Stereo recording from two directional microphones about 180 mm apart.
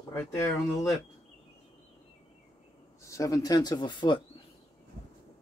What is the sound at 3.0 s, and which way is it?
Speech, 20° left (ahead or behind).